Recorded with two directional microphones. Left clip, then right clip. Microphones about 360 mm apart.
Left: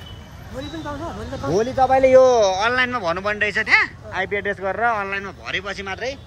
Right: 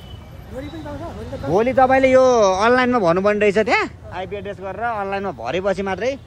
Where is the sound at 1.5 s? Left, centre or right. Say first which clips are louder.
Right 3 dB; right.